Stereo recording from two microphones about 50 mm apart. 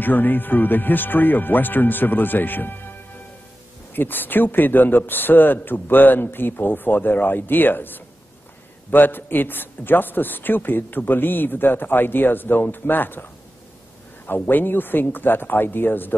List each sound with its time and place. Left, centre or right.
0.0 s a man's voice: left